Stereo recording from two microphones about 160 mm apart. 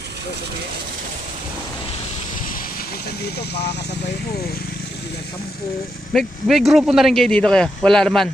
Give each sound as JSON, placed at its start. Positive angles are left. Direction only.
{"t": 3.3, "sound": "speech", "side_deg": 90}
{"t": 6.1, "sound": "speech", "side_deg": 0}